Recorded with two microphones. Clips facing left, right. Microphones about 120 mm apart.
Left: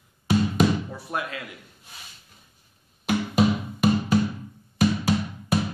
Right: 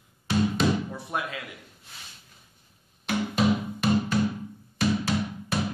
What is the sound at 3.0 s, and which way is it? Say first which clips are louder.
Music: left 3 dB; 10° left (ahead or behind).